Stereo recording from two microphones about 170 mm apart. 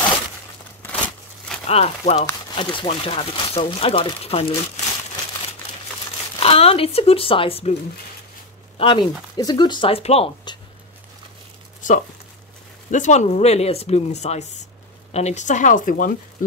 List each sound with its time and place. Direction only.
0.8 s a sound: 10° left (ahead or behind)
1.7 s speech: 35° left (ahead or behind)
6.4 s speech: 35° left (ahead or behind)
8.7 s speech: 30° left (ahead or behind)
12.9 s a woman's voice: 45° left (ahead or behind)